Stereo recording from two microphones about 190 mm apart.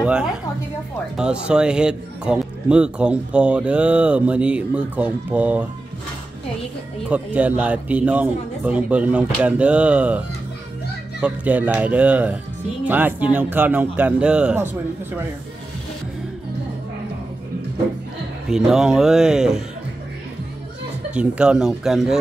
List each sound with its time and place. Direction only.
0.0 s a woman's voice: 5° right (ahead or behind)
7.1 s speech: 5° right (ahead or behind)
18.5 s speech: 5° right (ahead or behind)
21.1 s speech: 5° right (ahead or behind)